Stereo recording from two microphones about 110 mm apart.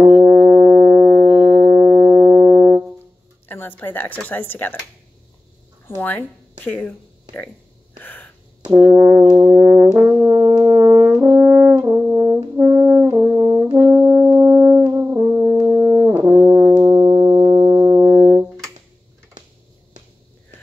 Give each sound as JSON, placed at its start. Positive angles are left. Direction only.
{"t": 0.1, "sound": "foghorn", "side_deg": -20}
{"t": 3.4, "sound": "speech", "side_deg": 20}
{"t": 5.9, "sound": "speech", "side_deg": 20}
{"t": 8.0, "sound": "a sound", "side_deg": 15}
{"t": 8.7, "sound": "brass instrument", "side_deg": -15}
{"t": 11.0, "sound": "french horn", "side_deg": -20}
{"t": 12.1, "sound": "brass instrument", "side_deg": -20}
{"t": 16.8, "sound": "music", "side_deg": -35}